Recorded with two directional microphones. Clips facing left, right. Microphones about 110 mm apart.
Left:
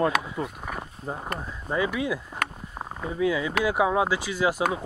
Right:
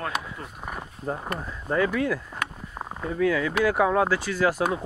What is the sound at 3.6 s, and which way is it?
Speech, 15° left (ahead or behind).